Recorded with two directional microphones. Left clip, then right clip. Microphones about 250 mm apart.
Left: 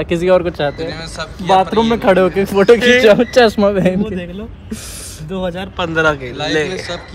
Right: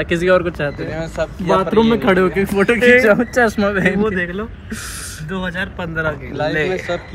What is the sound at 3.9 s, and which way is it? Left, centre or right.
Speech, centre.